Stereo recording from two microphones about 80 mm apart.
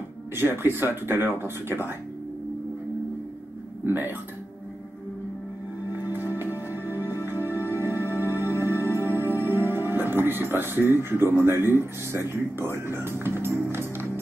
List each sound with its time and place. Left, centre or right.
0.4 s speech: right
3.8 s speech: right
5.9 s music: right
9.1 s speech: right